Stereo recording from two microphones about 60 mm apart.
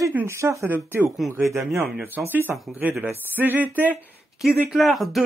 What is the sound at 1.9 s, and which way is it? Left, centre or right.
Speech, right.